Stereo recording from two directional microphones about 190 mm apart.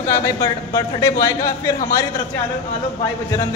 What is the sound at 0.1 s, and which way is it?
A man's voice, 15° left (ahead or behind).